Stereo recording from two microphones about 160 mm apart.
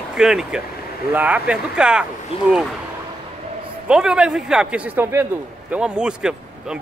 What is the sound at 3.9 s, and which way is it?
A man's voice, 5° right (ahead or behind).